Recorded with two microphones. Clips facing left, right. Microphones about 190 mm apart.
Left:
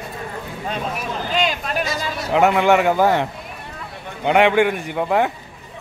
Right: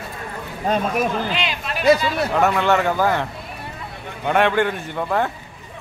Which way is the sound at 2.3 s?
15° left (ahead or behind).